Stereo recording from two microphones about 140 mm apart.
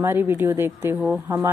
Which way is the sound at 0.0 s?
15° right (ahead or behind).